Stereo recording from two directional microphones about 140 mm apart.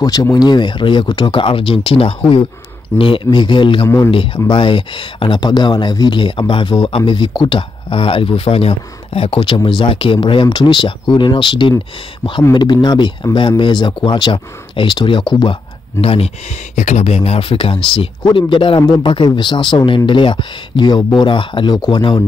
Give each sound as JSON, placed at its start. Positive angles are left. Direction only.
{"t": 0.0, "sound": "speech", "side_deg": 30}
{"t": 16.7, "sound": "speech", "side_deg": 55}